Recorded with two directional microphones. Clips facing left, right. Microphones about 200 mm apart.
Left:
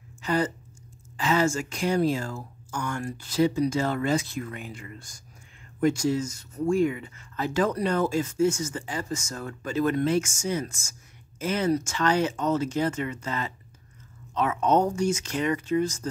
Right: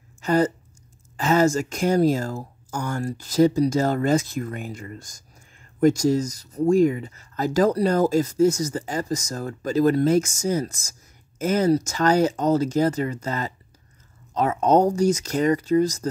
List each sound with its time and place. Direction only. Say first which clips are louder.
0.2 s speech: right 6 dB; 45° right (ahead or behind)